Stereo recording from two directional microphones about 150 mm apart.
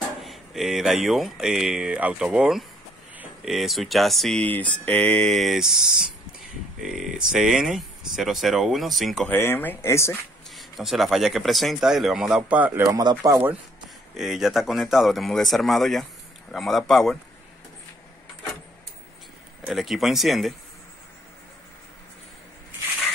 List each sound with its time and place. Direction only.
0.2 s speech: centre (ahead or behind)
9.3 s speech: 15° left (ahead or behind)
10.5 s speech: centre (ahead or behind)
12.9 s speech: 25° right (ahead or behind)
14.1 s speech: 5° right (ahead or behind)
19.6 s speech: centre (ahead or behind)